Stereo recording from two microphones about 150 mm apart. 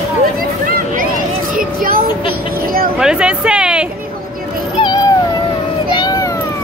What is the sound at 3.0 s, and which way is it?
Speech, 5° right (ahead or behind).